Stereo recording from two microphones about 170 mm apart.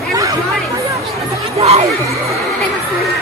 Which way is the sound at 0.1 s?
20° right (ahead or behind).